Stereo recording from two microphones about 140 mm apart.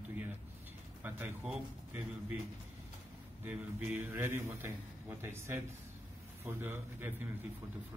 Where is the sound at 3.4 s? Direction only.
10° right (ahead or behind).